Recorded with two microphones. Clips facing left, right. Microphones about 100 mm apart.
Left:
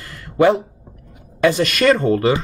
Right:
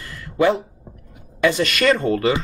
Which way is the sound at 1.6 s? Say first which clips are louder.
Left 3 dB; 35° left (ahead or behind).